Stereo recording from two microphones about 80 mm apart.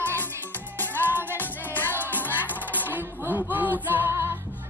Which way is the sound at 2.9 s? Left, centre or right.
Right.